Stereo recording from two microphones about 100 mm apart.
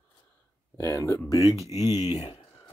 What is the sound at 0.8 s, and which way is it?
Speech, 25° left (ahead or behind).